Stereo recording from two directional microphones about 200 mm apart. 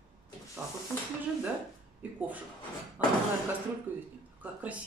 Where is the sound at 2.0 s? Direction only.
5° right (ahead or behind).